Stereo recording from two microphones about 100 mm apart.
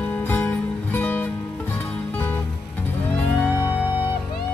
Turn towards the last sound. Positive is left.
turn(degrees=15)  # may be behind; listen again after turning